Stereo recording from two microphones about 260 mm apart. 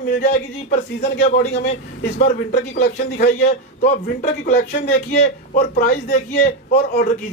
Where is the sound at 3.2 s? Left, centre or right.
Left.